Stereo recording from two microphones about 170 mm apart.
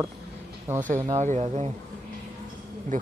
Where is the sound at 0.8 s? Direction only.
45° right (ahead or behind).